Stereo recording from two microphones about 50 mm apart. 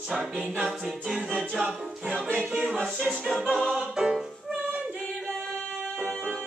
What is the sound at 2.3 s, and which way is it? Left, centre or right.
Music, right.